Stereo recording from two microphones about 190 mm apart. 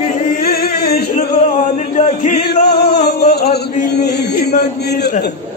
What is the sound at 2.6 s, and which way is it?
Music, 60° left (ahead or behind).